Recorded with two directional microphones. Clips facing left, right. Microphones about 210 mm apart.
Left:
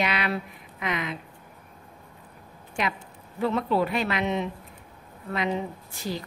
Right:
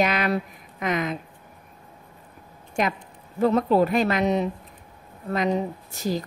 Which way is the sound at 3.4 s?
40° right (ahead or behind).